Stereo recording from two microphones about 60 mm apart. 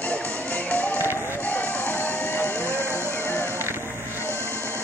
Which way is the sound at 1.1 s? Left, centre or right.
Left.